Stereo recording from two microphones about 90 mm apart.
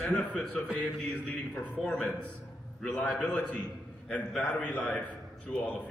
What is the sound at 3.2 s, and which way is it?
A man's voice, 15° left (ahead or behind).